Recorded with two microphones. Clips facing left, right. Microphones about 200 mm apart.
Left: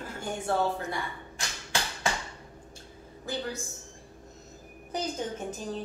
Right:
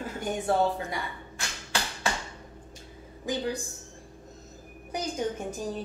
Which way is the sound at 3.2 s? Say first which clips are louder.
Right 4 dB; 15° right (ahead or behind).